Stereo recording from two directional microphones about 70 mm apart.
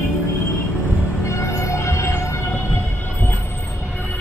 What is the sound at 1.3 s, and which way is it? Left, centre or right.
Music, left.